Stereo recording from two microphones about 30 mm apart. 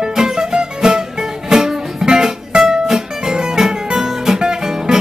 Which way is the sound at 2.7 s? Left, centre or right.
Right.